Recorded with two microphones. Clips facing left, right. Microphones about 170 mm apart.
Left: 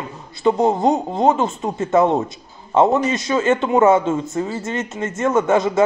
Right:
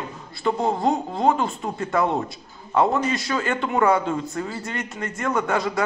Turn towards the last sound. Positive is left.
turn(degrees=20)  # may be behind; listen again after turning